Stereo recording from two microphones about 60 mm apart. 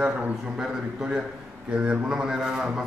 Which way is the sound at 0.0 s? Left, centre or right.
Right.